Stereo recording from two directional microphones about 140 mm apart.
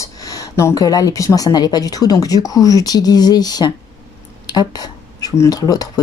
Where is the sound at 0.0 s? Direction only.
25° left (ahead or behind).